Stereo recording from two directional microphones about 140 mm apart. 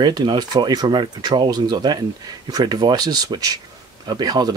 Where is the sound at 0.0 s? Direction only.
30° right (ahead or behind).